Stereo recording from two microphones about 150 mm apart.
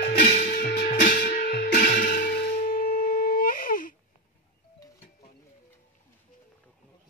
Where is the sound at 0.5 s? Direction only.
85° left; by 3.9 s 65° left (ahead or behind).